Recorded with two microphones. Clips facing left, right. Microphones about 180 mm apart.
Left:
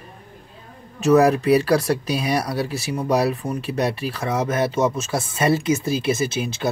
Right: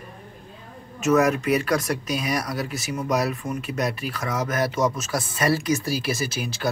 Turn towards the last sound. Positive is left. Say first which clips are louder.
# left 3 dB
turn(degrees=25)  # may be behind; listen again after turning